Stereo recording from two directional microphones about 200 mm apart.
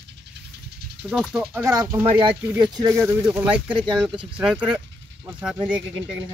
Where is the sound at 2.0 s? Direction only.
25° right (ahead or behind).